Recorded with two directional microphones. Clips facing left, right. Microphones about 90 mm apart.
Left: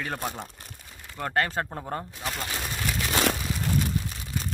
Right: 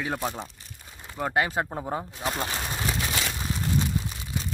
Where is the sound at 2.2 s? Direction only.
25° right (ahead or behind).